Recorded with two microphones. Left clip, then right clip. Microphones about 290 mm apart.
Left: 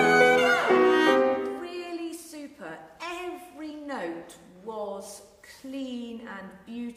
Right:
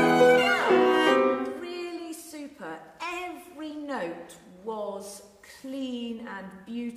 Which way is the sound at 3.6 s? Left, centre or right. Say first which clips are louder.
Right 4 dB; right.